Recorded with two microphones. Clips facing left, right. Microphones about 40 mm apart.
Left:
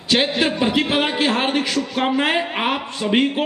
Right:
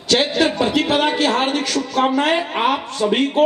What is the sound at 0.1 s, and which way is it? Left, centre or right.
A man's voice, left.